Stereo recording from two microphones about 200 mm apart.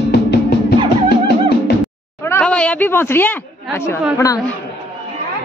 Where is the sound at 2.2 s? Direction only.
10° left (ahead or behind).